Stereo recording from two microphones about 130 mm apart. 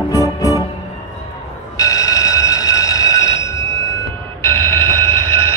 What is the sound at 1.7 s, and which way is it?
Train, 25° left (ahead or behind).